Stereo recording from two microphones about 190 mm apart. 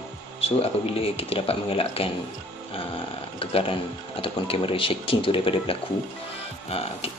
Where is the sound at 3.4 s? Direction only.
30° left (ahead or behind).